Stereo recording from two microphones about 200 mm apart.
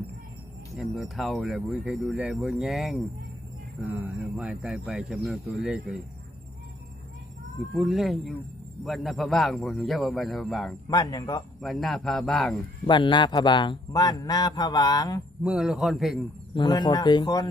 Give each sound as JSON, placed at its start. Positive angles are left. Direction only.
{"t": 0.7, "sound": "speech", "side_deg": 0}
{"t": 7.7, "sound": "speech", "side_deg": 0}
{"t": 10.9, "sound": "a man's voice", "side_deg": 20}
{"t": 11.6, "sound": "speech", "side_deg": 0}
{"t": 12.8, "sound": "a man's voice", "side_deg": 25}
{"t": 15.4, "sound": "speech", "side_deg": 0}
{"t": 16.5, "sound": "a man's voice", "side_deg": 20}